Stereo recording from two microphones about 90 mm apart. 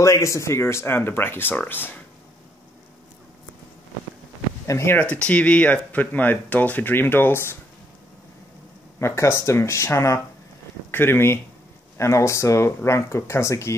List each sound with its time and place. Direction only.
0.0 s speech: 35° left (ahead or behind)
4.6 s speech: 30° left (ahead or behind)
5.1 s speech: 15° left (ahead or behind)
9.0 s speech: 30° left (ahead or behind)